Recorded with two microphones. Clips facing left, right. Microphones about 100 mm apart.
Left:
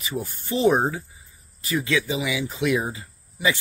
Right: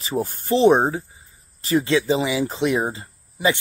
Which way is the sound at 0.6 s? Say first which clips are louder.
Right 4 dB; 30° right (ahead or behind).